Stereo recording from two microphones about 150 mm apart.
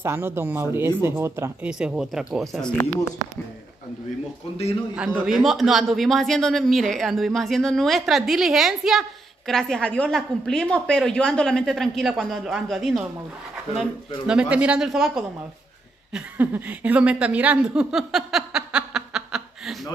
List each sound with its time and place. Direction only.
0.0 s speech: 15° right (ahead or behind)
1.7 s a man's voice: 5° right (ahead or behind)
4.9 s a man's voice: 5° right (ahead or behind)
14.2 s a man's voice: 5° right (ahead or behind)